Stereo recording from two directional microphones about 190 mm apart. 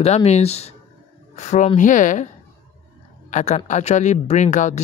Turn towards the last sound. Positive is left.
turn(degrees=40)  # may be behind; listen again after turning